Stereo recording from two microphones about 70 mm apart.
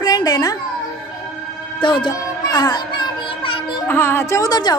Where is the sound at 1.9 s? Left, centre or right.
Left.